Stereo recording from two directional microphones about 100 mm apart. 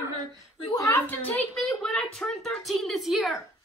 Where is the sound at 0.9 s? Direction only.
15° left (ahead or behind); by 3.2 s centre (ahead or behind).